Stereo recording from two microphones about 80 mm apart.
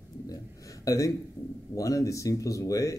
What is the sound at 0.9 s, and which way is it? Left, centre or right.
Speech, left.